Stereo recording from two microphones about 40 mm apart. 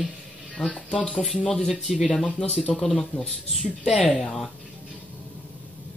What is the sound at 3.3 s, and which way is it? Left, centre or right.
Speech, centre.